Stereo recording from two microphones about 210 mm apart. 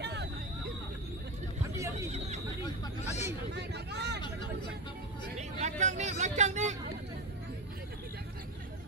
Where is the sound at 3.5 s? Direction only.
50° right (ahead or behind).